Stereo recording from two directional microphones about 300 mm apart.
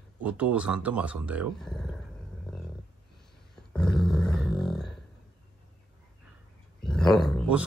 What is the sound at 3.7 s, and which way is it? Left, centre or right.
Growling, centre.